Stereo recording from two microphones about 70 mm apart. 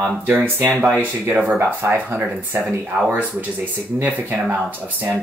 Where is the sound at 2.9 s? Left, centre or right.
Centre.